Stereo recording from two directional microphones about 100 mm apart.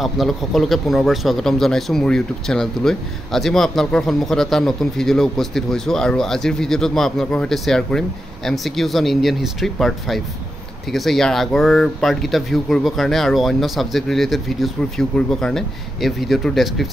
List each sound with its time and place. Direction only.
0.0 s a man's voice: centre (ahead or behind)